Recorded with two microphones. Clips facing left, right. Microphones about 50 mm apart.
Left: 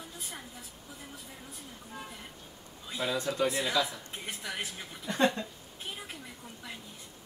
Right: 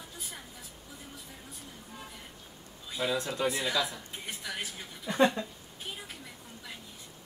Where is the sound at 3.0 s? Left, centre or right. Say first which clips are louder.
Even; centre.